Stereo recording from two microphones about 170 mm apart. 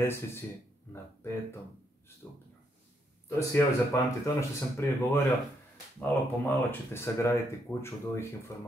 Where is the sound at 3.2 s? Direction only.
15° left (ahead or behind).